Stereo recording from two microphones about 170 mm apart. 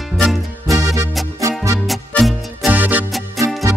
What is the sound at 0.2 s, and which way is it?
Music, centre (ahead or behind).